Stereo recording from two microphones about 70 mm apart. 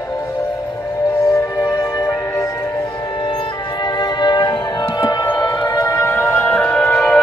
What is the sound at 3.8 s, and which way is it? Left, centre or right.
Music, left.